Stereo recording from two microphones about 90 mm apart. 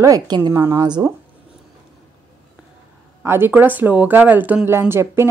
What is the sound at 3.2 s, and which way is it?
Speech, 25° right (ahead or behind).